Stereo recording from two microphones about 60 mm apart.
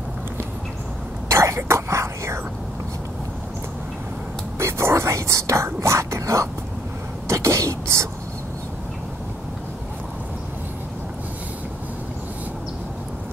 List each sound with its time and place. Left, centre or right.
1.3 s whispering: right
4.6 s speech: right
7.2 s a sound: right